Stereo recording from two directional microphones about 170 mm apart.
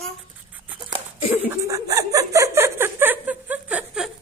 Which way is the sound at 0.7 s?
25° right (ahead or behind).